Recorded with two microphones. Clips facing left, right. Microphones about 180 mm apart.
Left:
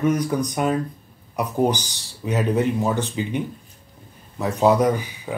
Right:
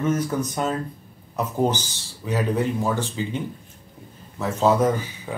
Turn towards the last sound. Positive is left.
turn(degrees=15)  # may be behind; listen again after turning